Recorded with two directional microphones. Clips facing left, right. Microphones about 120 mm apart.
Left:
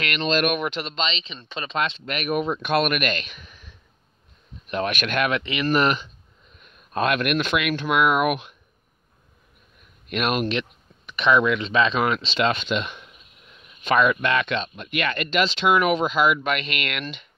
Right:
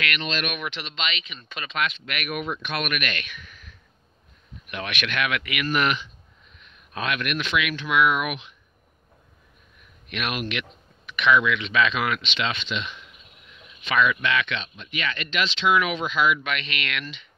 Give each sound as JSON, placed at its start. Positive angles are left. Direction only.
{"t": 0.0, "sound": "speech", "side_deg": 35}
{"t": 1.0, "sound": "speech", "side_deg": 30}
{"t": 5.4, "sound": "speech", "side_deg": 30}
{"t": 10.0, "sound": "speech", "side_deg": 40}